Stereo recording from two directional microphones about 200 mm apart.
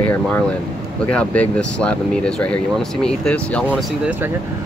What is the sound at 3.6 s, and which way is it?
Speech, 5° right (ahead or behind).